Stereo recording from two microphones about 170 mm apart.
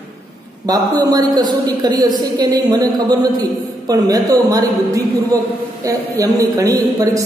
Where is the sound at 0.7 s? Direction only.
20° right (ahead or behind).